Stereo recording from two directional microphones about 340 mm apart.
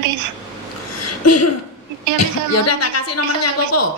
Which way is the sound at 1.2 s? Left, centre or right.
Left.